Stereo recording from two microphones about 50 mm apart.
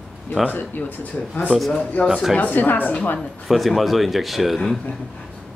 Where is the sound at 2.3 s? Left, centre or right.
Left.